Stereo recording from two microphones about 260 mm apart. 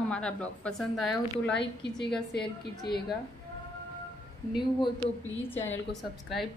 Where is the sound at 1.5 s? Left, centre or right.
Left.